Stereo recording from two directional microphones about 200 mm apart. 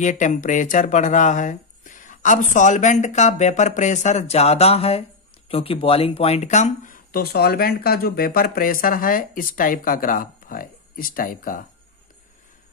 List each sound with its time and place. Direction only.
0.0 s speech: 40° left (ahead or behind)